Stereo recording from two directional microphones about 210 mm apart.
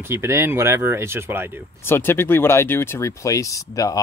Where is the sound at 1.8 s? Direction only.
10° left (ahead or behind).